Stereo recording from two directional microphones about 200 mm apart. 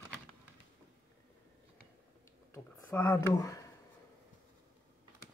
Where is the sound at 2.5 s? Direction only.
10° left (ahead or behind).